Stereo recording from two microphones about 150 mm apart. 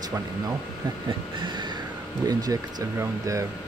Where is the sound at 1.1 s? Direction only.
30° right (ahead or behind).